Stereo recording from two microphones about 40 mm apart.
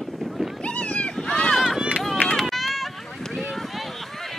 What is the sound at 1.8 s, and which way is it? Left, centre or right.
Run, right.